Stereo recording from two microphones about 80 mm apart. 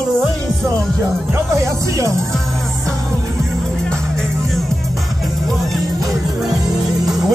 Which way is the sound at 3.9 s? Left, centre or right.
Centre.